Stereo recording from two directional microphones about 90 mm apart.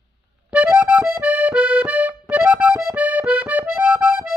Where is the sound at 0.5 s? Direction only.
15° right (ahead or behind).